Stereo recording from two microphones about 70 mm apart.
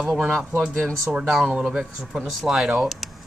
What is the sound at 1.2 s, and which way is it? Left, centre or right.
Speech, centre.